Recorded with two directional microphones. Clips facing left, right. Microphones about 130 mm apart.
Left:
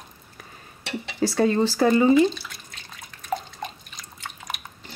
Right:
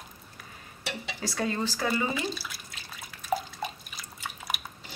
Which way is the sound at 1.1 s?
30° left (ahead or behind).